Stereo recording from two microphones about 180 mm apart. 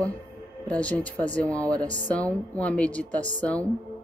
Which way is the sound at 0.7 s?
5° left (ahead or behind).